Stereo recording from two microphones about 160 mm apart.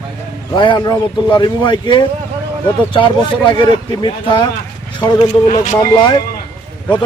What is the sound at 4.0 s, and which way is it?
A man's voice, 30° left (ahead or behind).